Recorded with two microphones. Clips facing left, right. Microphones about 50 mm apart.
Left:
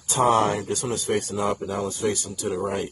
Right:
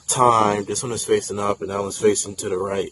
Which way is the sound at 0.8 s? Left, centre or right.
Right.